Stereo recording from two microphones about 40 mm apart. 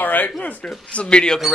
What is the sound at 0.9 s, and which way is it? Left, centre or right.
Speech, left.